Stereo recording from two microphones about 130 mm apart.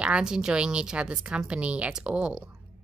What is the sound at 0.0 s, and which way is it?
A woman's voice, 5° right (ahead or behind).